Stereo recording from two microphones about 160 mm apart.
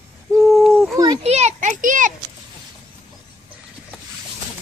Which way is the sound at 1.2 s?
45° right (ahead or behind).